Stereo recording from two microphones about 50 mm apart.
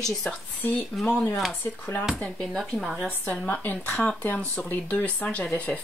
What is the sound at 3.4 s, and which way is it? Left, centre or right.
Speech, left.